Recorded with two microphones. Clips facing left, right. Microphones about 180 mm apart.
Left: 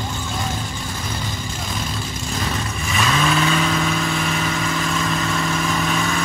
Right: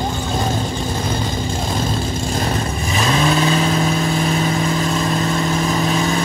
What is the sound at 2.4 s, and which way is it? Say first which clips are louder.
Vehicle: right 5 dB; 35° right (ahead or behind).